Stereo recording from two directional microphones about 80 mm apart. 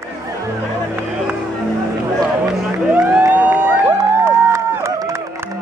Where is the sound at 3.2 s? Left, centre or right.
Right.